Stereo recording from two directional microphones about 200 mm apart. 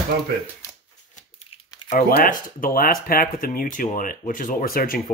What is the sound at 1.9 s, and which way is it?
Speech, 45° left (ahead or behind).